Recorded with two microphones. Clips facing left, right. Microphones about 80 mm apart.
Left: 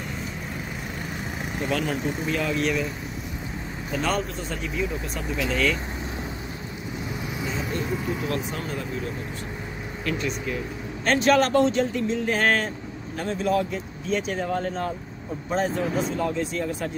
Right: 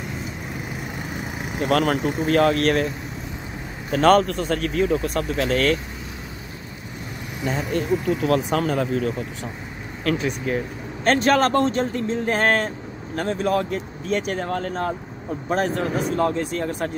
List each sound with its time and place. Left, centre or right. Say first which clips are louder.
1.6 s speech: right 7 dB; right
3.9 s speech: right 10 dB; right
5.1 s speech: right 5 dB; right
7.4 s speech: right 7 dB; right
8.3 s speech: right 8 dB; right
11.1 s speech: right 2 dB; right